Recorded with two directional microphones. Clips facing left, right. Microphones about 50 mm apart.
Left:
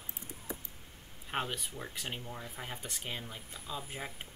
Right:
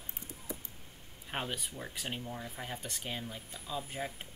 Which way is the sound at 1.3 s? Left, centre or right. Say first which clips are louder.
Left 2 dB; centre.